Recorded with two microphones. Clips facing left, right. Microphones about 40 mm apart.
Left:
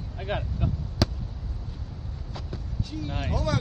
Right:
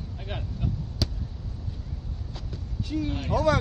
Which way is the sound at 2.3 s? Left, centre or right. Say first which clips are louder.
Left 4 dB; centre.